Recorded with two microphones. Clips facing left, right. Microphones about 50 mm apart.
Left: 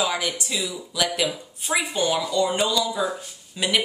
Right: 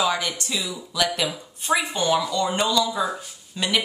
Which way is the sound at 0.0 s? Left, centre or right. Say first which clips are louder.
Right 1 dB; centre.